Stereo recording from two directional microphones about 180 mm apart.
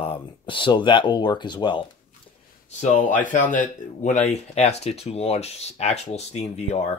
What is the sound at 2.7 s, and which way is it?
Speech, 40° left (ahead or behind).